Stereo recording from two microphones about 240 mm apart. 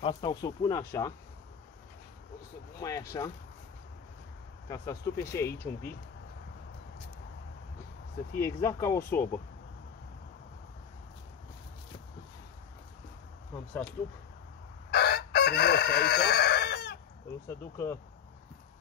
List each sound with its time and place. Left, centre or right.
0.0 s speech: centre
2.8 s speech: centre
4.6 s speech: centre
8.4 s speech: centre
14.9 s crowing: left
17.5 s speech: centre